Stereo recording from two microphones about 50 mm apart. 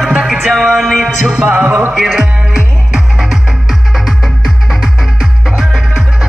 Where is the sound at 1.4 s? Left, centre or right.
Right.